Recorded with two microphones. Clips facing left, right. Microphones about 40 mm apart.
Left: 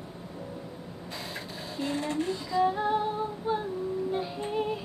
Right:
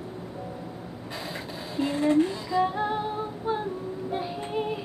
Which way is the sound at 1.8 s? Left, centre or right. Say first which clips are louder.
Right 7 dB; centre.